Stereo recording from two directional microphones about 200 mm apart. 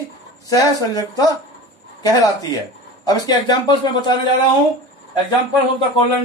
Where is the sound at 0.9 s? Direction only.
20° left (ahead or behind).